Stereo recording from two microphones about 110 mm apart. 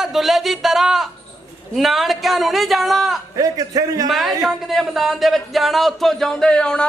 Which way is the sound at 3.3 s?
35° right (ahead or behind).